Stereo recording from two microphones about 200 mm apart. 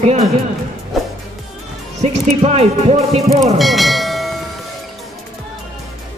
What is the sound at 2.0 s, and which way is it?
Speech, 30° right (ahead or behind).